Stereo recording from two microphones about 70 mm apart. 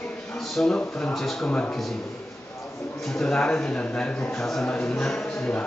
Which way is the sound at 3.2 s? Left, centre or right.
Centre.